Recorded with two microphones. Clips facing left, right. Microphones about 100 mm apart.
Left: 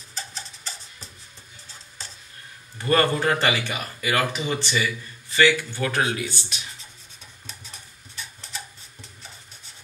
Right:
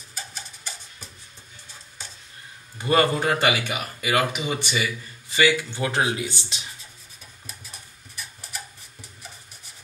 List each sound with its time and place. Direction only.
0.7 s music: 5° right (ahead or behind)
2.8 s speech: 15° right (ahead or behind)